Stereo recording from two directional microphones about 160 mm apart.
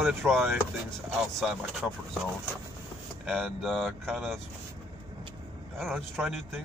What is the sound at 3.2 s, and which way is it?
Speech, centre (ahead or behind).